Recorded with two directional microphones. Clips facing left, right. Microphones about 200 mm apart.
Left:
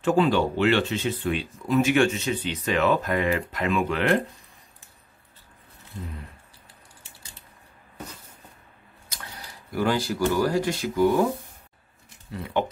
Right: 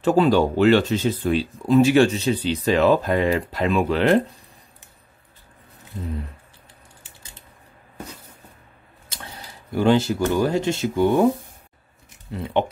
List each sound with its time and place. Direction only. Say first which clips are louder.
0.0 s speech: right 4 dB; 40° right (ahead or behind)
9.1 s speech: right 3 dB; 25° right (ahead or behind)
12.3 s speech: right 4 dB; 25° right (ahead or behind)